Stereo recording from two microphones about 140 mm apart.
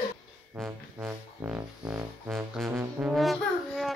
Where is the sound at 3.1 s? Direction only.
Centre (ahead or behind).